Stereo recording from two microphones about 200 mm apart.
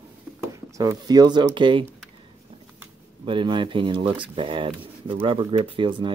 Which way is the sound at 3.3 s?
25° right (ahead or behind).